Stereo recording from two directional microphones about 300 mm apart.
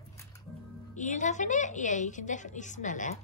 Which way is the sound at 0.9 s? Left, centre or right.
Left.